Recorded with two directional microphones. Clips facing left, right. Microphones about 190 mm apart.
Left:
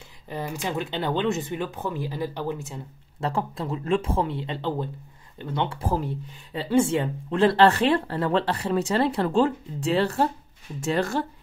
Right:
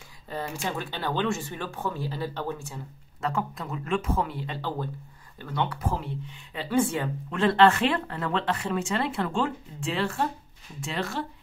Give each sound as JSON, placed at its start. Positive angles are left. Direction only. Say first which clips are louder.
{"t": 0.3, "sound": "speech", "louder": "left 2 dB", "side_deg": 20}